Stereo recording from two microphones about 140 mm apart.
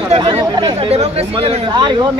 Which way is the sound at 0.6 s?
40° right (ahead or behind).